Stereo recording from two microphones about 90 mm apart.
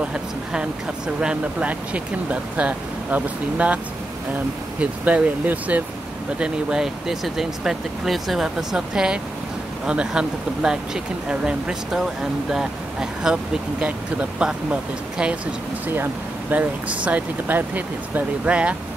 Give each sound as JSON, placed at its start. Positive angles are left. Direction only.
{"t": 0.0, "sound": "speech", "side_deg": -10}
{"t": 6.4, "sound": "speech", "side_deg": -5}
{"t": 15.9, "sound": "speech", "side_deg": -20}